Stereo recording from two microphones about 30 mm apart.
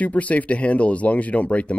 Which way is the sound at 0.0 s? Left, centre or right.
Left.